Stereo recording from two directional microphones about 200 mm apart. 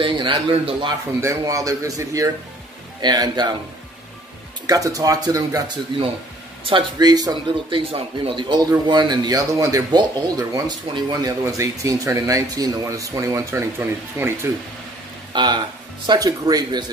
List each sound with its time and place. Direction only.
0.0 s speech: 25° right (ahead or behind)
4.6 s speech: 15° right (ahead or behind)
15.3 s speech: 20° right (ahead or behind)